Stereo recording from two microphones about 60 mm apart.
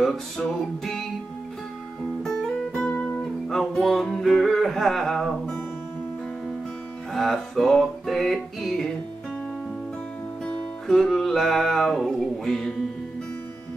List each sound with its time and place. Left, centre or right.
0.0 s music: centre
2.2 s music: centre
2.9 s music: left
3.4 s music: centre
7.2 s music: centre
10.9 s music: centre